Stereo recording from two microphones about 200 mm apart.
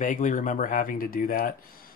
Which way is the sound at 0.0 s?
40° left (ahead or behind).